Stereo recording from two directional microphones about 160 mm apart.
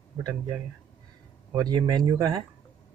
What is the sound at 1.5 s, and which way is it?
Speech, 25° right (ahead or behind).